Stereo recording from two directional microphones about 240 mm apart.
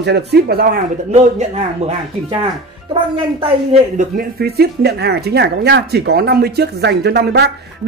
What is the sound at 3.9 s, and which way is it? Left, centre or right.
Speech, right.